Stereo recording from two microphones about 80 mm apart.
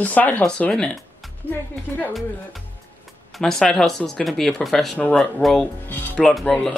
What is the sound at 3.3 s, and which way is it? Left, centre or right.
Speech, centre.